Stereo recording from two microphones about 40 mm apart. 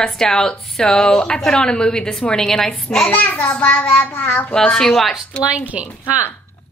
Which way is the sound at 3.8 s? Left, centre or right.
Left.